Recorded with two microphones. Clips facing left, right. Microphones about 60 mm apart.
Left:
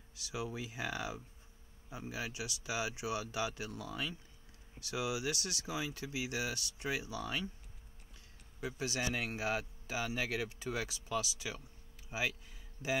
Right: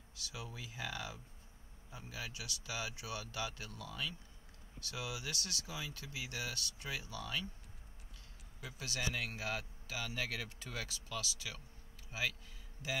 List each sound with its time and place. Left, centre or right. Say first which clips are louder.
0.2 s speech: left 7 dB; left
8.6 s speech: left 5 dB; left